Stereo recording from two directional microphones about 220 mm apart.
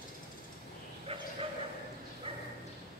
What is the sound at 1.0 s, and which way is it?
Bow-wow, 25° right (ahead or behind).